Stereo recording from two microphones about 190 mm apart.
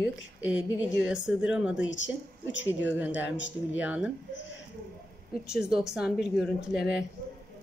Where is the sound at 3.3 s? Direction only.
75° left (ahead or behind).